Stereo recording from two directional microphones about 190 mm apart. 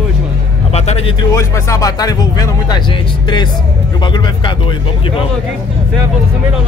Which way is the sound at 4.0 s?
25° left (ahead or behind).